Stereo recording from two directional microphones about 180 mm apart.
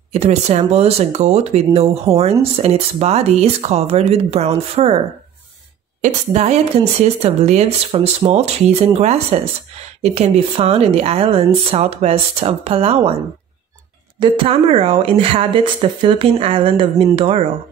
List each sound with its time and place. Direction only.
0.1 s speech: 35° right (ahead or behind)
6.0 s speech: 40° right (ahead or behind)
14.2 s speech: 30° right (ahead or behind)